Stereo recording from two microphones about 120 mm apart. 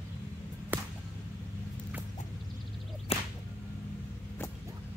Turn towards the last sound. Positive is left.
turn(degrees=55)  # may be behind; listen again after turning